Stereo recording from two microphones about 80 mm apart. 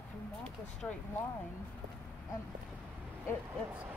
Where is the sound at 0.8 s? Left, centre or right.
Centre.